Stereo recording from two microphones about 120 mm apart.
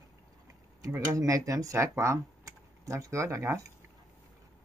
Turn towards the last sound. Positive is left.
turn(degrees=-25)  # may be behind; listen again after turning